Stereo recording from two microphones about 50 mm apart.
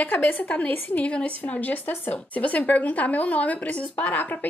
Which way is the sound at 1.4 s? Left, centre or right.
Left.